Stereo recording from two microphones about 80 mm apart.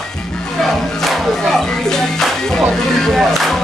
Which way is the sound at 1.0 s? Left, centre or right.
Centre.